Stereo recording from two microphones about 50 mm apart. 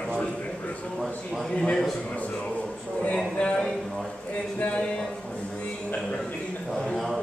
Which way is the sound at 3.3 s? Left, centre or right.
Centre.